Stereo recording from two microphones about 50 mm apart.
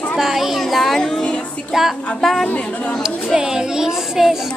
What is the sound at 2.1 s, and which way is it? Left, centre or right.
Speech, centre.